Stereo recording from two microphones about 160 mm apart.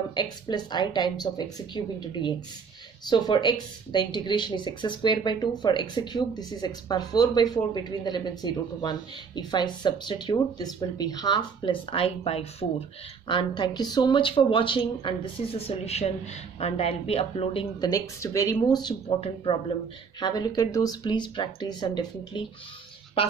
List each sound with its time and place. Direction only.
0.1 s speech: 25° left (ahead or behind)
17.7 s speech: 25° left (ahead or behind)